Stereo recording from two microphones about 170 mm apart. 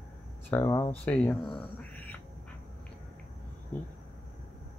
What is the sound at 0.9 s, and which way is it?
Speech, 5° left (ahead or behind).